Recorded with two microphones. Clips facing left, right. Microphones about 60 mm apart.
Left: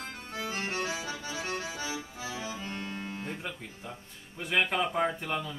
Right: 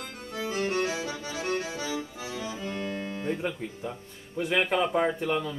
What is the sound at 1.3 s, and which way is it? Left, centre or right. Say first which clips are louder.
Music: right 6 dB; right.